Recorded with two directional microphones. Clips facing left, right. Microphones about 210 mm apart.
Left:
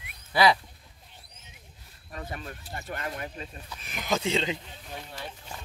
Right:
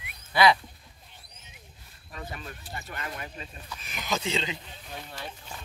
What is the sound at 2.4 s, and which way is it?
Speech, 50° left (ahead or behind).